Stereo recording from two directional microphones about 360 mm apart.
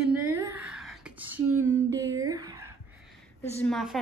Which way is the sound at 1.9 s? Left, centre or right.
Centre.